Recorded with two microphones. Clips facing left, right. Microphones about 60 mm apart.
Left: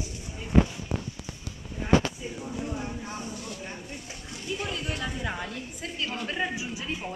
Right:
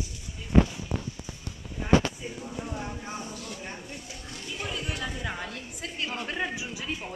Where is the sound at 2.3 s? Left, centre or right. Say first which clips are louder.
Left 2 dB; centre.